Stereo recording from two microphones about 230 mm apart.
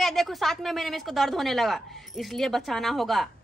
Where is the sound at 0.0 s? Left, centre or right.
Centre.